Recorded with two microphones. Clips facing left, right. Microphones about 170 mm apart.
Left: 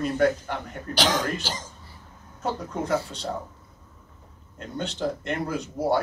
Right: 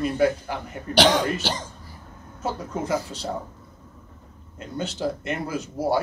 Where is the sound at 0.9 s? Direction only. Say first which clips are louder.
Right 6 dB; 65° right (ahead or behind).